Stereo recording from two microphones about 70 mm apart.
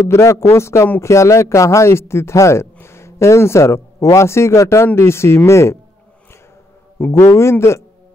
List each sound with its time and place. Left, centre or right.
0.1 s speech: left
7.1 s speech: left